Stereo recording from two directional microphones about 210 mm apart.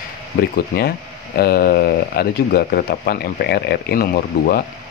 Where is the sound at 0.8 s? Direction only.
45° left (ahead or behind).